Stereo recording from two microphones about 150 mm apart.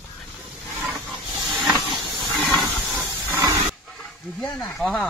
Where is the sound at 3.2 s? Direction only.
20° right (ahead or behind).